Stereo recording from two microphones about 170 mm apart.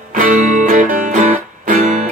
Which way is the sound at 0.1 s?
50° right (ahead or behind).